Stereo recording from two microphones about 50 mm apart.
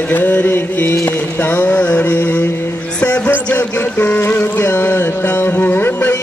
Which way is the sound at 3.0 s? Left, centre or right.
Left.